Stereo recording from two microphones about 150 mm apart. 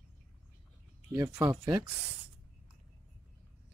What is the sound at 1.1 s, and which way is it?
Speech, 20° right (ahead or behind).